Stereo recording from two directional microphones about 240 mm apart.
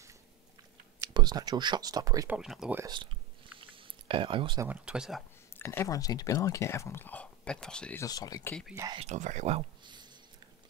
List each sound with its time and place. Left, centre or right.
1.0 s speech: centre
3.5 s a sound: right
4.6 s speech: centre
5.6 s speech: centre
8.7 s speech: centre
9.0 s speech: right